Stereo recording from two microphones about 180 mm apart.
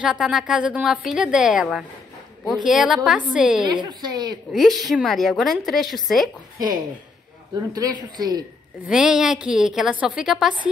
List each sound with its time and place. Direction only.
0.0 s a woman's voice: 5° right (ahead or behind)
3.6 s speech: 25° right (ahead or behind)
4.5 s a woman's voice: centre (ahead or behind)
7.7 s speech: 20° right (ahead or behind)
8.8 s a woman's voice: 5° right (ahead or behind)